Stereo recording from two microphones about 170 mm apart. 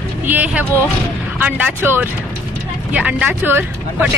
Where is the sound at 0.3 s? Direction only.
10° right (ahead or behind).